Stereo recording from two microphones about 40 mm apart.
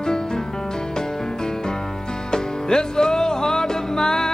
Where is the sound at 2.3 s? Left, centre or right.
Centre.